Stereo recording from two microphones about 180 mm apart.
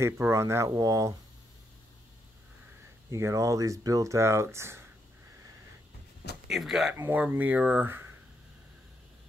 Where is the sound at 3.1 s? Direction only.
15° right (ahead or behind).